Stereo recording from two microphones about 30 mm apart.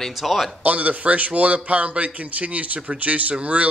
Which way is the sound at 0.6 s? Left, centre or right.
Right.